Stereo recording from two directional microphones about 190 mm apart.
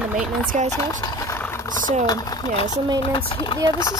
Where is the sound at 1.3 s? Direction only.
15° left (ahead or behind).